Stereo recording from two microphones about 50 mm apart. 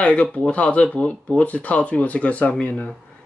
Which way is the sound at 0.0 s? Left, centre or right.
Left.